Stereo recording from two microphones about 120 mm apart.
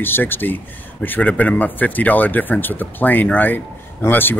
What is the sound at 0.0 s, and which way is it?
Speech, 15° left (ahead or behind).